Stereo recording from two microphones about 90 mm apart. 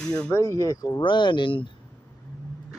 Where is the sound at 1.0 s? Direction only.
60° left (ahead or behind).